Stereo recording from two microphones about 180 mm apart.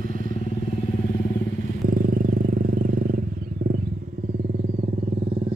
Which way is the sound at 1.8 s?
55° right (ahead or behind).